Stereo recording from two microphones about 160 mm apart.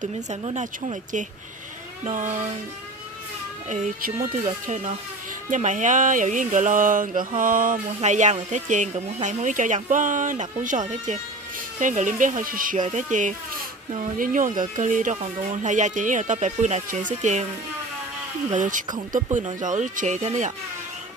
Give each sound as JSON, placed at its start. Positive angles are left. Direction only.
{"t": 0.0, "sound": "mantra", "side_deg": -45}
{"t": 3.6, "sound": "mantra", "side_deg": -50}
{"t": 13.9, "sound": "speech", "side_deg": -55}
{"t": 15.1, "sound": "mantra", "side_deg": -50}
{"t": 18.5, "sound": "mantra", "side_deg": -55}